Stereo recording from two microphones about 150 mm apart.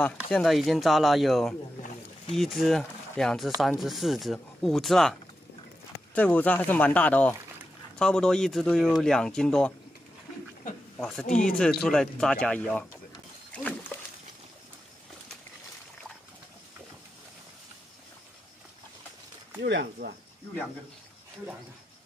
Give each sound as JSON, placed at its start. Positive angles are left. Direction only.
{"t": 0.3, "sound": "speech", "side_deg": 0}
{"t": 6.1, "sound": "speech", "side_deg": 10}
{"t": 11.0, "sound": "speech", "side_deg": 5}
{"t": 11.2, "sound": "speech", "side_deg": 60}
{"t": 11.5, "sound": "speech", "side_deg": 5}
{"t": 19.6, "sound": "speech", "side_deg": -90}